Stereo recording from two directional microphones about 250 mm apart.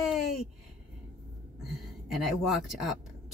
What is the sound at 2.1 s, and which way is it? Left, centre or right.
Speech, centre.